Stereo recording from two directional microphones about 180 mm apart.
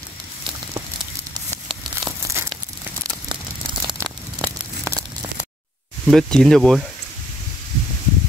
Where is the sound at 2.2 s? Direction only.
15° right (ahead or behind).